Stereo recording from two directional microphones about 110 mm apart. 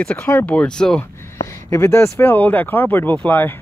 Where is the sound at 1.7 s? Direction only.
25° left (ahead or behind).